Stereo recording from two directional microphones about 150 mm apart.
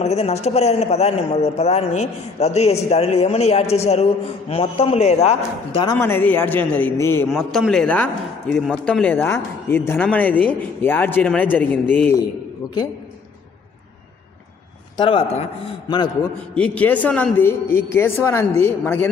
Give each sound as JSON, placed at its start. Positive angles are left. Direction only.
{"t": 0.0, "sound": "a man's voice", "side_deg": 45}
{"t": 5.9, "sound": "a man's voice", "side_deg": 15}
{"t": 7.2, "sound": "a man's voice", "side_deg": 0}
{"t": 15.0, "sound": "speech", "side_deg": 35}
{"t": 16.5, "sound": "a man's voice", "side_deg": 10}